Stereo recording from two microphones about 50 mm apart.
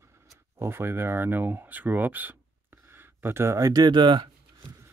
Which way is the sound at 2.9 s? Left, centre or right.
Right.